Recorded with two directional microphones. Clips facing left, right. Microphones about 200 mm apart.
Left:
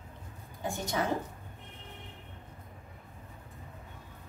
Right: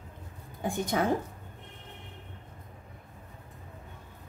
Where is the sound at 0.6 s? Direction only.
55° right (ahead or behind).